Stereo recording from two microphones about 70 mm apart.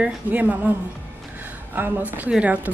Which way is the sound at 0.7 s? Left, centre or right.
Right.